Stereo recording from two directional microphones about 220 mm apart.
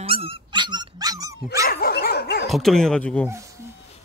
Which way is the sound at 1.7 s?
45° left (ahead or behind).